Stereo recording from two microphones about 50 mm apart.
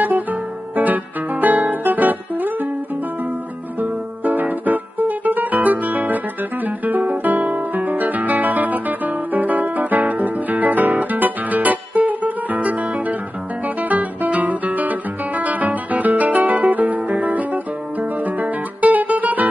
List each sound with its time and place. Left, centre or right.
0.0 s guitar: right
3.8 s music: right
13.7 s guitar: right
18.2 s music: right